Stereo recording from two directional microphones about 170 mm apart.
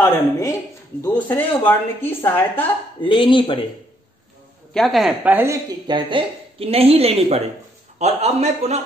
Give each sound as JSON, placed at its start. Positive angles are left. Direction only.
{"t": 0.0, "sound": "speech", "side_deg": 20}
{"t": 0.9, "sound": "a woman's voice", "side_deg": 10}
{"t": 3.0, "sound": "speech", "side_deg": 30}
{"t": 4.7, "sound": "a woman's voice", "side_deg": 0}